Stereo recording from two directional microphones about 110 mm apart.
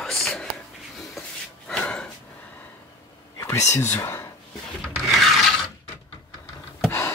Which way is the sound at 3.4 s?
25° left (ahead or behind).